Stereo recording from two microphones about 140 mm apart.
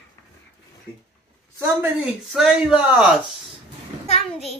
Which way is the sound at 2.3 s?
5° right (ahead or behind).